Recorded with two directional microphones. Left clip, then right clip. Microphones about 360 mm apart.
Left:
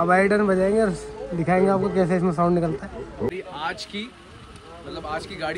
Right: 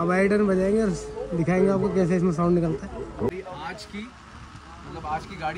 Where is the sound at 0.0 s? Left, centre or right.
Centre.